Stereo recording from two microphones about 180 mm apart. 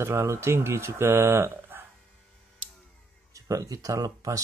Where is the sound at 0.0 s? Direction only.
15° right (ahead or behind).